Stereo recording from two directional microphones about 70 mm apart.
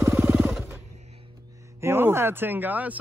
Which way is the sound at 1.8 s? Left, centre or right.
Right.